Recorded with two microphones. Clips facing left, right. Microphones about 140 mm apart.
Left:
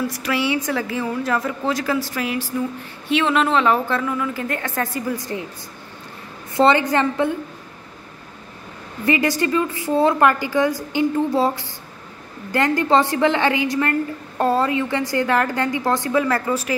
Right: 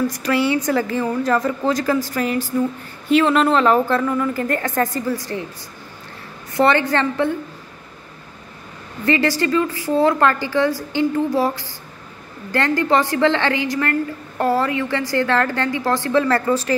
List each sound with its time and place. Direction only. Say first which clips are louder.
0.1 s a woman's voice: right 3 dB; 5° left (ahead or behind)
5.1 s a woman's voice: right 1 dB; 20° left (ahead or behind)
6.5 s a woman's voice: left 1 dB; 20° left (ahead or behind)
9.0 s a woman's voice: right 1 dB; 20° left (ahead or behind)
16.1 s a woman's voice: right 5 dB; 10° left (ahead or behind)